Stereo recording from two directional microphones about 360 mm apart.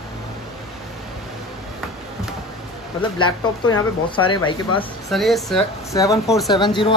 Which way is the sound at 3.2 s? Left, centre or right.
Centre.